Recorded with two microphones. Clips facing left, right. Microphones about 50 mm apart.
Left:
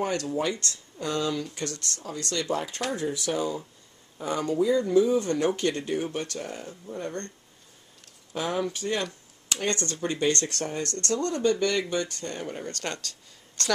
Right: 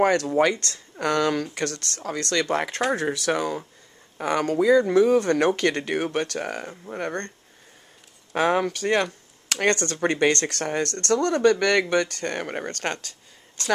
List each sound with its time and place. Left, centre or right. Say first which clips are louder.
0.2 s speech: right 7 dB; right
6.7 s speech: right 4 dB; right
8.3 s speech: right 7 dB; right
12.8 s speech: right 4 dB; right
13.6 s speech: right 3 dB; centre